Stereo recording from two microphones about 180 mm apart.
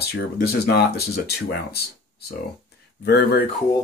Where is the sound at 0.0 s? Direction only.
60° left (ahead or behind).